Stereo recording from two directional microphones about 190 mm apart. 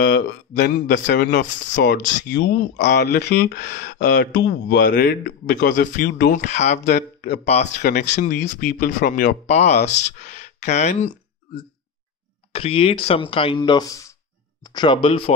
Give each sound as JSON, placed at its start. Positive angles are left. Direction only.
{"t": 0.0, "sound": "speech", "side_deg": 65}
{"t": 6.4, "sound": "speech", "side_deg": 35}
{"t": 6.8, "sound": "speech", "side_deg": 55}
{"t": 7.4, "sound": "speech", "side_deg": 35}
{"t": 7.8, "sound": "speech", "side_deg": 50}
{"t": 9.5, "sound": "speech", "side_deg": 35}